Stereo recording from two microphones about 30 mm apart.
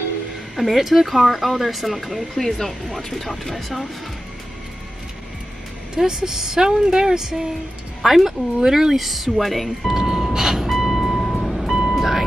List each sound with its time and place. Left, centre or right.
0.6 s speech: centre
2.3 s speech: centre
6.0 s a woman's voice: centre
8.5 s speech: centre
9.8 s music: centre
10.3 s vehicle: centre
10.7 s vehicle: centre
11.7 s vehicle: centre
12.0 s a sound: centre